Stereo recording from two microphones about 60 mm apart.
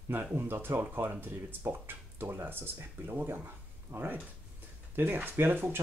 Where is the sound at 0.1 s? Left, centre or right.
Right.